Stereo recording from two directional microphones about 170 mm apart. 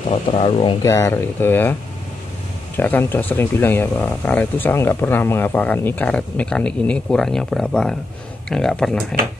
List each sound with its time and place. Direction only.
0.1 s speech: 35° left (ahead or behind)
0.8 s speech: 20° left (ahead or behind)
2.8 s speech: 10° left (ahead or behind)